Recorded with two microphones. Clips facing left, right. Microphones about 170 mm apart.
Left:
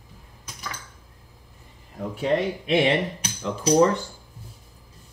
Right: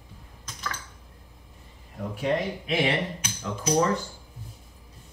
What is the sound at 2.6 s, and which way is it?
Speech, 30° left (ahead or behind).